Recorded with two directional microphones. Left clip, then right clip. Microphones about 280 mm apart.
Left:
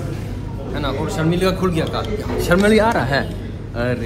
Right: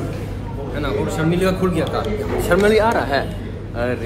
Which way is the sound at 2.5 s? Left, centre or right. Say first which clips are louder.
Even; left.